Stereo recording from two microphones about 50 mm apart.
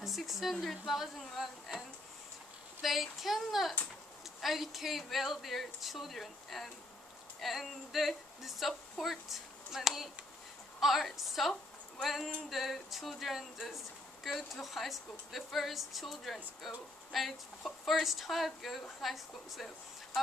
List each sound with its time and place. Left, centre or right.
0.0 s a woman's voice: centre
2.8 s a woman's voice: centre